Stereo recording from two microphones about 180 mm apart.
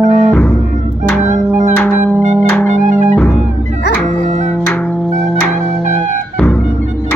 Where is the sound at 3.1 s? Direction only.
5° left (ahead or behind).